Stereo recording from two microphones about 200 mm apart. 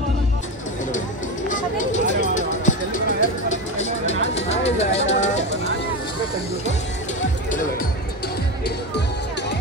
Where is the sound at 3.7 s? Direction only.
35° left (ahead or behind).